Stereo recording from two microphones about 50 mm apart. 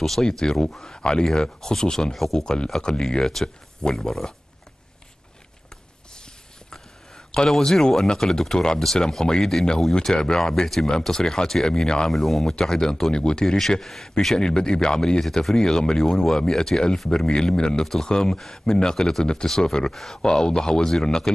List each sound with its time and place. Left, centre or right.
0.0 s speech: centre
7.3 s speech: centre
12.1 s speech: centre
13.6 s speech: centre